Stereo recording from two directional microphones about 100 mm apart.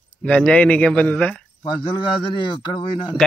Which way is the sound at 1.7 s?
50° left (ahead or behind).